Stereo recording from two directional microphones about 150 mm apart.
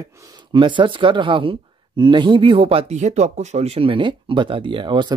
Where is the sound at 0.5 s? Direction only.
30° right (ahead or behind).